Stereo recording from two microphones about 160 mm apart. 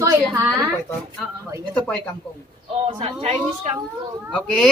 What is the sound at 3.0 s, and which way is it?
Speech, 40° right (ahead or behind).